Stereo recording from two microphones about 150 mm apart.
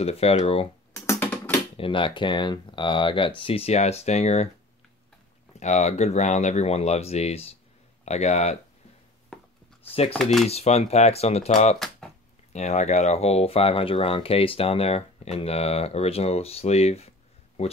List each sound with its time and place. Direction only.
0.0 s speech: 40° left (ahead or behind)
0.9 s computer keyboard: 20° left (ahead or behind)
1.8 s speech: 35° left (ahead or behind)
5.6 s speech: 50° left (ahead or behind)
9.3 s a sound: 5° left (ahead or behind)
9.8 s speech: 40° left (ahead or behind)
12.0 s a sound: 5° left (ahead or behind)
12.5 s speech: 50° left (ahead or behind)